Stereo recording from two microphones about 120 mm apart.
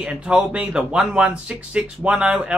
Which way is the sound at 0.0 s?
10° right (ahead or behind).